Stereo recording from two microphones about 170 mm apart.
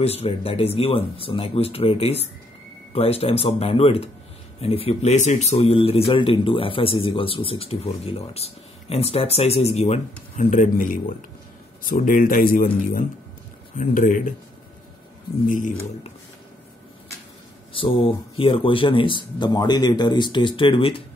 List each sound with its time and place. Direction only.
0.0 s a man's voice: 35° left (ahead or behind)
10.4 s speech: 50° left (ahead or behind)
15.4 s speech: 50° left (ahead or behind)
17.7 s speech: 30° left (ahead or behind)